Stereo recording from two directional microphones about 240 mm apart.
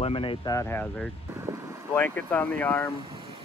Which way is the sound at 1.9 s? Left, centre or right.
Centre.